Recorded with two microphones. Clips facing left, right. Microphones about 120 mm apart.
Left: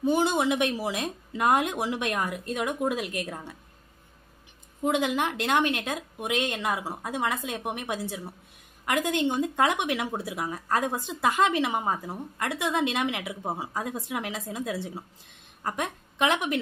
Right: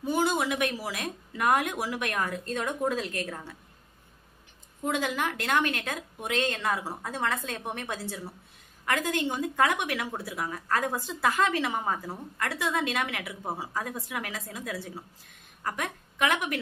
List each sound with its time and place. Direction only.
0.0 s a woman's voice: 25° left (ahead or behind)
4.8 s a woman's voice: 20° left (ahead or behind)